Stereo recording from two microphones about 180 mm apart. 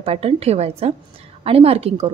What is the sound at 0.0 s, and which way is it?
A woman's voice, 35° right (ahead or behind).